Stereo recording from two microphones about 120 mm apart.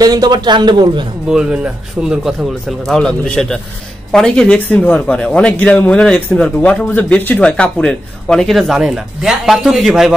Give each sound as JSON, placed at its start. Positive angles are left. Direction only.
{"t": 0.0, "sound": "a man's voice", "side_deg": -35}
{"t": 1.3, "sound": "speech", "side_deg": -5}
{"t": 2.8, "sound": "a man's voice", "side_deg": 5}